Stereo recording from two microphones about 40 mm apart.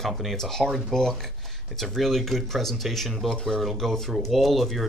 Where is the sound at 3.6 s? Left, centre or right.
Centre.